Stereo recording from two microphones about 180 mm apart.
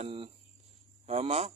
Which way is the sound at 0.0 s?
30° right (ahead or behind).